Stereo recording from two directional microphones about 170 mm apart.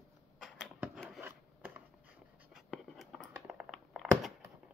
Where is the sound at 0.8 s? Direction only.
Centre (ahead or behind).